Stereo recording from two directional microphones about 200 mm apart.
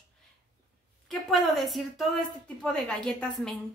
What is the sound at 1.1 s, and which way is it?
A woman's voice, centre (ahead or behind).